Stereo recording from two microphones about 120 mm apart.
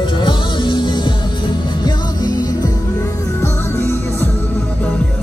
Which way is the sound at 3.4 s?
20° left (ahead or behind).